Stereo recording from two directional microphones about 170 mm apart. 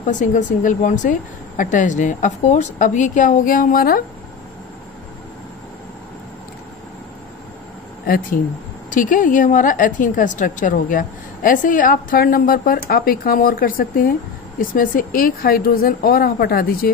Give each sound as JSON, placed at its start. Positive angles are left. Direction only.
{"t": 0.2, "sound": "a woman's voice", "side_deg": 50}
{"t": 8.9, "sound": "a woman's voice", "side_deg": 50}